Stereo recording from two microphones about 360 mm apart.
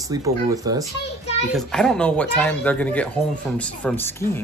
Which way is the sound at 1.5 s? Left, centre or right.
Centre.